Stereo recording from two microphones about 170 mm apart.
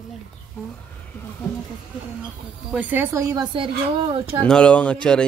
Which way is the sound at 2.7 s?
10° right (ahead or behind).